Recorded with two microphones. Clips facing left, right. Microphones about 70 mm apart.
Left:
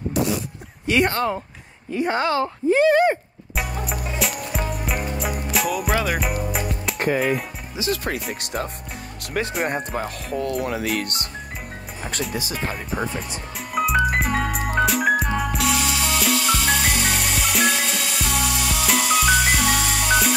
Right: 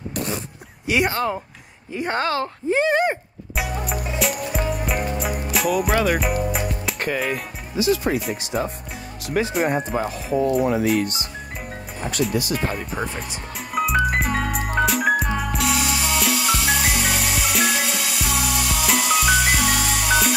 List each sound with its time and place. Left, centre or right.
0.8 s speech: centre
2.2 s speech: centre
2.7 s speech: right
3.5 s music: centre
7.0 s speech: left
10.5 s speech: right
10.8 s speech: left
12.5 s speech: centre
13.7 s music: centre